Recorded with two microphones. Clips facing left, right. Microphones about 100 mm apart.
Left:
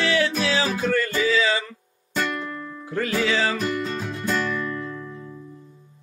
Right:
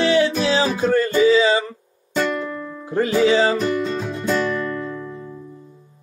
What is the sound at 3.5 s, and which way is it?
Music, centre (ahead or behind).